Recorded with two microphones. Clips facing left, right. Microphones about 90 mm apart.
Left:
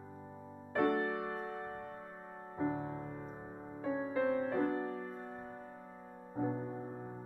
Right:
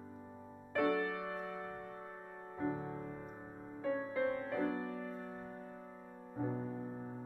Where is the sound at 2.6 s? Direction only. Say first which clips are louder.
Left 2 dB; 20° left (ahead or behind).